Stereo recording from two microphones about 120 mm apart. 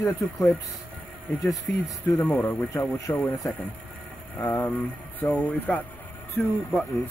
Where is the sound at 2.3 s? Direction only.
15° left (ahead or behind).